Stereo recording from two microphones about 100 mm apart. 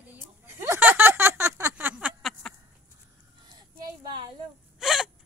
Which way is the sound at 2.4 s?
5° left (ahead or behind).